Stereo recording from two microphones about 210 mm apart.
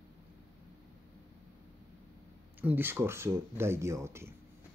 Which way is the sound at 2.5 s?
10° right (ahead or behind).